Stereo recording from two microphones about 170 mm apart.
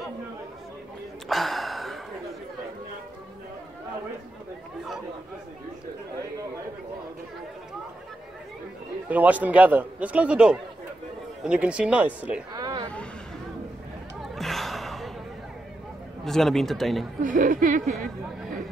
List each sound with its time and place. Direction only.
1.3 s gasp: centre (ahead or behind)
9.1 s speech: 10° right (ahead or behind)
12.5 s a sound: 25° right (ahead or behind)
14.2 s gasp: centre (ahead or behind)
16.3 s speech: centre (ahead or behind)
17.2 s speech: 50° right (ahead or behind)